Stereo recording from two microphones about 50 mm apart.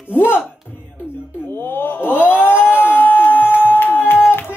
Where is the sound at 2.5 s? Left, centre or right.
Left.